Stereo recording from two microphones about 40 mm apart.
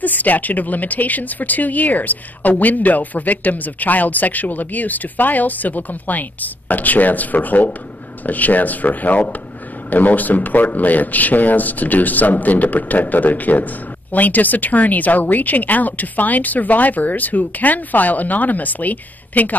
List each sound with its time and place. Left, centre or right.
0.0 s a man's voice: left